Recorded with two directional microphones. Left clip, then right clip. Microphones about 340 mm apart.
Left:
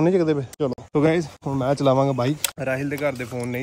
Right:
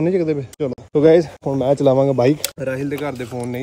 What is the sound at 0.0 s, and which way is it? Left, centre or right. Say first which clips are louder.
Speech: right 1 dB; centre.